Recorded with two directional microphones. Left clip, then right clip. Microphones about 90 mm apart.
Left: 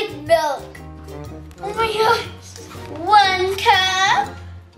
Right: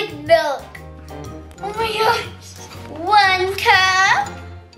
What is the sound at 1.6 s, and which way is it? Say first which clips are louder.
Speech: left 1 dB; 15° right (ahead or behind).